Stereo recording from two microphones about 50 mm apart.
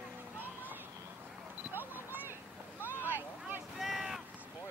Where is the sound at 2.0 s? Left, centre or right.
Right.